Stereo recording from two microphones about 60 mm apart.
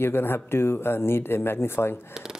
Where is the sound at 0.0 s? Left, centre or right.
Left.